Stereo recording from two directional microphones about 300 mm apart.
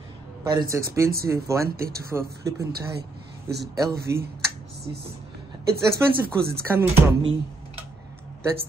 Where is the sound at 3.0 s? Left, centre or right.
Right.